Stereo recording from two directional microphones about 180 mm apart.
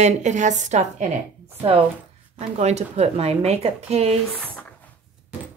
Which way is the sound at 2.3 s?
40° right (ahead or behind).